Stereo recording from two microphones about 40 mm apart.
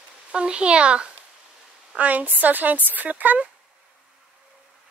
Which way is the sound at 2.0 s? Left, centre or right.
Right.